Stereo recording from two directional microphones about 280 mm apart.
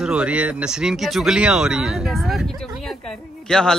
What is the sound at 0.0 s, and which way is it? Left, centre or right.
Speech, centre.